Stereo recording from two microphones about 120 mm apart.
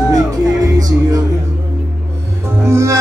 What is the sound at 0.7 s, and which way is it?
Music, 30° right (ahead or behind).